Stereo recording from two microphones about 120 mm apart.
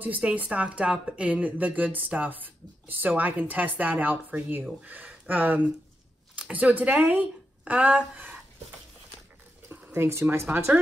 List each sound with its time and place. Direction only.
0.0 s speech: 10° right (ahead or behind)
9.7 s speech: 20° right (ahead or behind)